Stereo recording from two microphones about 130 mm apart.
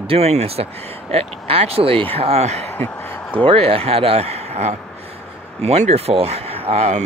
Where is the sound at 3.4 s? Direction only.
45° right (ahead or behind).